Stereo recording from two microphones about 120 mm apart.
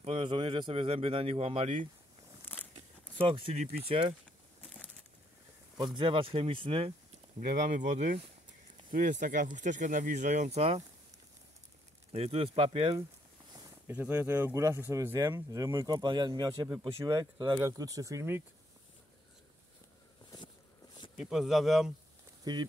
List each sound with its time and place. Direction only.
0.0 s speech: 45° right (ahead or behind)
2.4 s a sound: 15° left (ahead or behind)
2.7 s a sound: 50° right (ahead or behind)
3.8 s speech: 50° right (ahead or behind)
4.6 s a sound: 5° left (ahead or behind)
5.9 s speech: 45° right (ahead or behind)
7.3 s speech: 90° right; by 8.3 s 70° right (ahead or behind)
9.0 s speech: 90° right; by 10.8 s 60° right (ahead or behind)
12.1 s speech: 60° right (ahead or behind)
13.8 s speech: 15° right (ahead or behind)
15.1 s speech: 30° right (ahead or behind)
21.2 s speech: 5° right (ahead or behind)
22.4 s speech: 35° right (ahead or behind)